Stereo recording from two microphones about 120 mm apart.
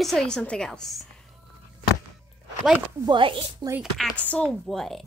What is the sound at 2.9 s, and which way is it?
Speech, 40° right (ahead or behind).